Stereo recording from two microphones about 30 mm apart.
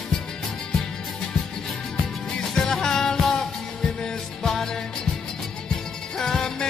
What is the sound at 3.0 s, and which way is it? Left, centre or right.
Music, centre.